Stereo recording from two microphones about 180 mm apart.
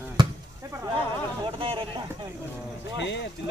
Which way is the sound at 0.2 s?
15° right (ahead or behind).